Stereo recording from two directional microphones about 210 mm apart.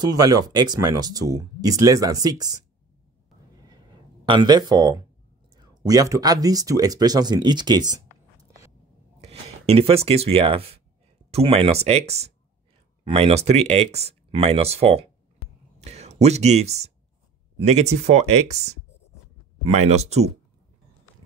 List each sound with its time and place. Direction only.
0.0 s speech: 15° right (ahead or behind)
3.5 s a sound: 20° right (ahead or behind)
5.6 s speech: 20° right (ahead or behind)
9.2 s speech: 30° right (ahead or behind)
19.7 s speech: 30° right (ahead or behind)